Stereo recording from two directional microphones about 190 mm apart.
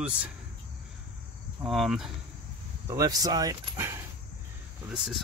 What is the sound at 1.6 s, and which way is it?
Speech, centre (ahead or behind).